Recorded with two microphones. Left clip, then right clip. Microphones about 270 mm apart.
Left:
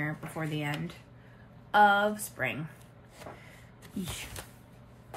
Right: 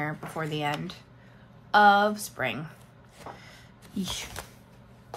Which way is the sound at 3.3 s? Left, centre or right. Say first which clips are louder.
Right 4 dB; centre.